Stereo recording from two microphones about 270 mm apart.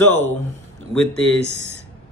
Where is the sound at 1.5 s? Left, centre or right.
Right.